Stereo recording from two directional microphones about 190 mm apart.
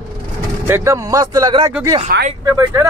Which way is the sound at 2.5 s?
15° right (ahead or behind).